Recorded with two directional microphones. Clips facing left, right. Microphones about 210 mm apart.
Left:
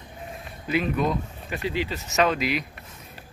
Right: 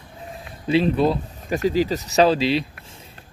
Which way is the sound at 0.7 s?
30° right (ahead or behind).